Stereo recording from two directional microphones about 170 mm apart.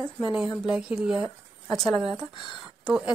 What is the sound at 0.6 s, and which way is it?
A woman's voice, 5° right (ahead or behind).